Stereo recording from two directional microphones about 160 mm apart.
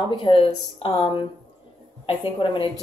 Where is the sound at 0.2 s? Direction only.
30° left (ahead or behind).